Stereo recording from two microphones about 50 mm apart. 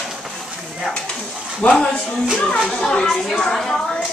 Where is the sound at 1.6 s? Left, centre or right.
Left.